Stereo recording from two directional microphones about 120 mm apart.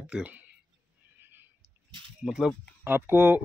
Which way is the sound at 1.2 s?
20° right (ahead or behind).